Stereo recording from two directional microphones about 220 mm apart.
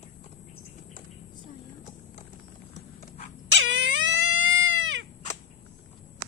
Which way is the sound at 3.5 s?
55° right (ahead or behind).